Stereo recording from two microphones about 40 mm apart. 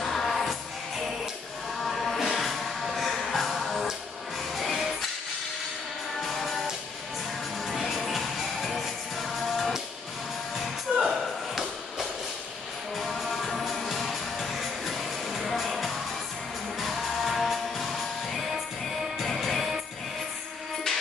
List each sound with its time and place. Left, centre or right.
0.0 s music: centre
7.6 s music: centre